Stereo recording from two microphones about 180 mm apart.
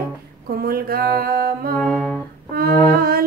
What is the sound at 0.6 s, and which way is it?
A woman's voice, 55° right (ahead or behind).